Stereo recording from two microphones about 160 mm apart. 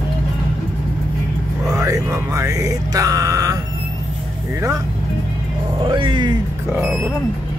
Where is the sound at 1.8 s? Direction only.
20° right (ahead or behind).